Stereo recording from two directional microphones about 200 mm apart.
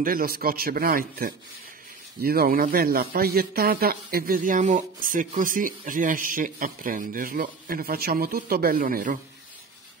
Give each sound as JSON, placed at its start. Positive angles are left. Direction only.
{"t": 0.0, "sound": "speech", "side_deg": -45}